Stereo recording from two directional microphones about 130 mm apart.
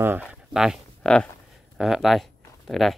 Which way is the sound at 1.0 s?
5° left (ahead or behind).